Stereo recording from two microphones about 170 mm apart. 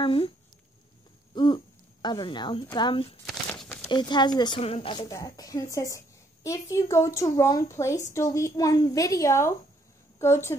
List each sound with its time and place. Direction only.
0.0 s speech: 30° left (ahead or behind)
1.3 s speech: 25° left (ahead or behind)
3.3 s a sound: 5° left (ahead or behind)
3.9 s a woman's voice: 25° left (ahead or behind)